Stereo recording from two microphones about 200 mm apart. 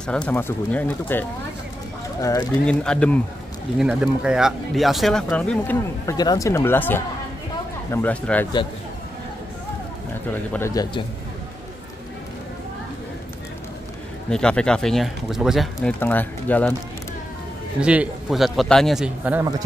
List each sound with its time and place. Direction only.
0.0 s speech: 5° left (ahead or behind)
2.2 s speech: 20° left (ahead or behind)
2.6 s speech: 5° left (ahead or behind)
6.0 s speech: 20° left (ahead or behind)
10.3 s speech: 10° left (ahead or behind)
14.3 s speech: 5° left (ahead or behind)
17.7 s speech: 5° right (ahead or behind)